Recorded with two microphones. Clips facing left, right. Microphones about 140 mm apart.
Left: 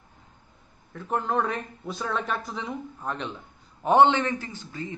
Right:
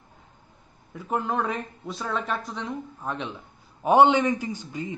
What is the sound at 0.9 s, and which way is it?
Speech, 5° right (ahead or behind).